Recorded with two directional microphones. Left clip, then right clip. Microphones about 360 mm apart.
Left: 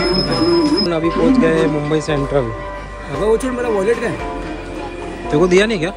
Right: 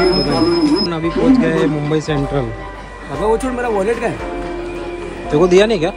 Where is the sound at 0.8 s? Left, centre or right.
Centre.